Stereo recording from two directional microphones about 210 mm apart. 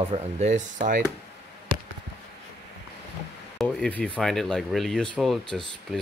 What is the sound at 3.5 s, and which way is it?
Speech, 5° left (ahead or behind).